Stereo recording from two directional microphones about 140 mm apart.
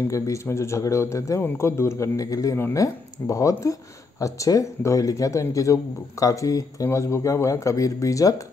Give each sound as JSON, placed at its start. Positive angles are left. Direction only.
{"t": 0.1, "sound": "speech", "side_deg": 20}